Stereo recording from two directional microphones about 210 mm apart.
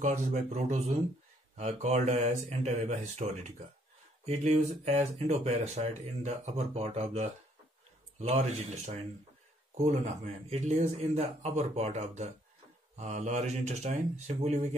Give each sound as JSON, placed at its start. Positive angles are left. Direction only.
{"t": 0.0, "sound": "speech", "side_deg": -35}
{"t": 4.3, "sound": "speech", "side_deg": -30}